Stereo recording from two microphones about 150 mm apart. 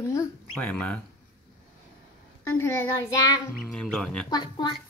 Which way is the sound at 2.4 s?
15° left (ahead or behind).